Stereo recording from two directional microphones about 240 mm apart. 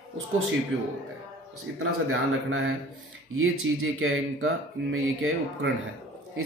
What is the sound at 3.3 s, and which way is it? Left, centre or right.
Speech, right.